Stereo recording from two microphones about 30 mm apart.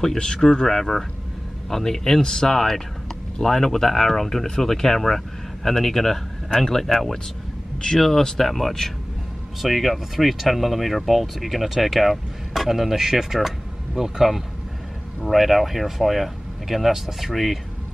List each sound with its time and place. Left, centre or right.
0.0 s speech: centre
8.4 s speech: centre
15.2 s speech: centre